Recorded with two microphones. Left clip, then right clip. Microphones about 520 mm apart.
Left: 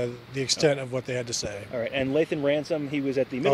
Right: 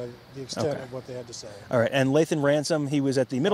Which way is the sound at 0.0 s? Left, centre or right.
Left.